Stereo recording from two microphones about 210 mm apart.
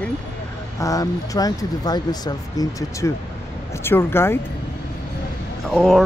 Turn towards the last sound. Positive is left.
turn(degrees=0)  # may be behind; listen again after turning